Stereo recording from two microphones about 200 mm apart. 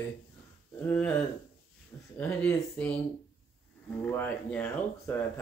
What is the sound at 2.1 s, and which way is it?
Speech, 10° left (ahead or behind).